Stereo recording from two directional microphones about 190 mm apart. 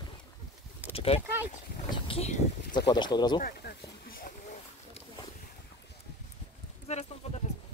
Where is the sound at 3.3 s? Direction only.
50° left (ahead or behind).